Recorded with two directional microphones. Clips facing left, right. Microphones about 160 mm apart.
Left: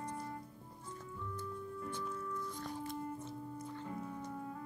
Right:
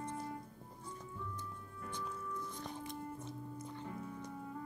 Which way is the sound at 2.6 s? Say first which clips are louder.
Left 3 dB; 20° right (ahead or behind).